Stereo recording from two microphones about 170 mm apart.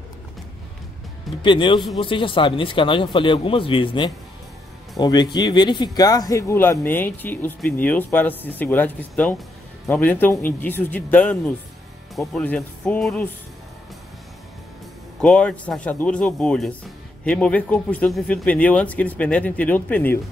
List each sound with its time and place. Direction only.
1.4 s a man's voice: 30° left (ahead or behind); by 13.3 s 10° left (ahead or behind)
15.1 s speech: 5° left (ahead or behind)